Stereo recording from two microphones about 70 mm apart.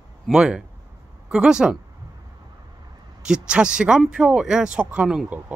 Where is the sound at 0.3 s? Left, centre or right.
Centre.